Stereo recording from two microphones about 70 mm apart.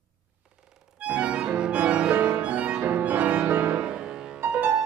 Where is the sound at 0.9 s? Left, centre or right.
Centre.